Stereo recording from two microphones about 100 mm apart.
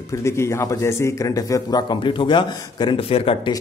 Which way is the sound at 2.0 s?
55° left (ahead or behind).